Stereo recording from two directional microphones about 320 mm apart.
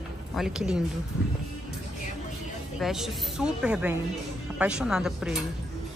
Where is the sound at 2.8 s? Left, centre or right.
Centre.